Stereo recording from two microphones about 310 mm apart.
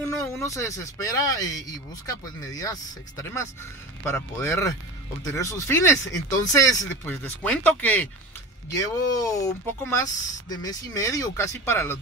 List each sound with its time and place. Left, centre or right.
0.0 s speech: centre